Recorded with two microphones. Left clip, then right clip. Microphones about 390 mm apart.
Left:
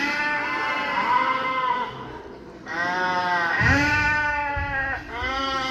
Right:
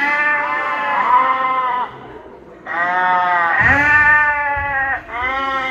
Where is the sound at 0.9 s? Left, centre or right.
Centre.